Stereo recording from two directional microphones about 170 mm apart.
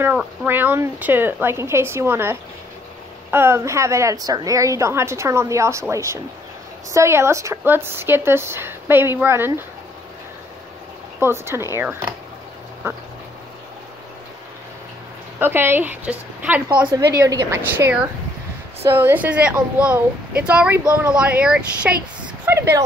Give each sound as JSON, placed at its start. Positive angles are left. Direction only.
{"t": 0.0, "sound": "a woman's voice", "side_deg": -10}
{"t": 11.1, "sound": "a woman's voice", "side_deg": -15}
{"t": 15.3, "sound": "a woman's voice", "side_deg": -15}